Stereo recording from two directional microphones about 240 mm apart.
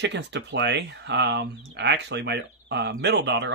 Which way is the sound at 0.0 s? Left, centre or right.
Right.